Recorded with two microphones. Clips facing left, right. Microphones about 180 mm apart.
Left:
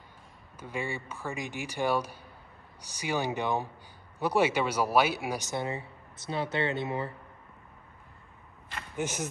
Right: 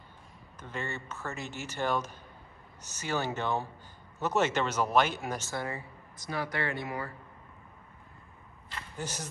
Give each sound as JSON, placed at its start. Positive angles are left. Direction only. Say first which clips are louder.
{"t": 0.6, "sound": "speech", "louder": "left 3 dB", "side_deg": 10}